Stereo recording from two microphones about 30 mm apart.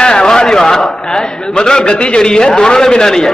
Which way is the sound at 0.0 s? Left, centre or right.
Left.